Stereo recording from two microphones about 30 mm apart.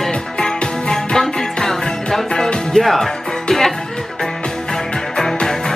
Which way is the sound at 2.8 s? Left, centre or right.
Centre.